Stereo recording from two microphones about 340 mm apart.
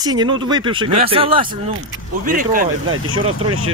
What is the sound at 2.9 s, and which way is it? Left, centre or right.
Speech, right.